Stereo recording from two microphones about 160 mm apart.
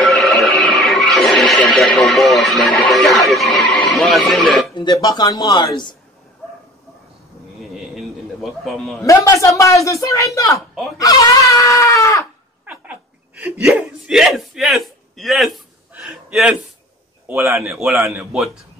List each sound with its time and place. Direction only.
0.0 s music: centre (ahead or behind)
4.7 s speech: 25° left (ahead or behind)
6.4 s bow-wow: 5° left (ahead or behind)
7.7 s a sound: centre (ahead or behind)
9.0 s speech: 20° left (ahead or behind)
12.6 s a sound: 10° right (ahead or behind)
17.3 s speech: 15° right (ahead or behind)
17.6 s a man's voice: centre (ahead or behind)